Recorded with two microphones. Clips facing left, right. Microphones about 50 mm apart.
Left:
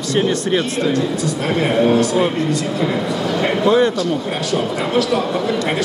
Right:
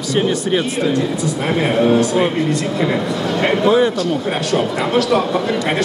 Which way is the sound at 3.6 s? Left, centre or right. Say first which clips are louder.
Even; centre.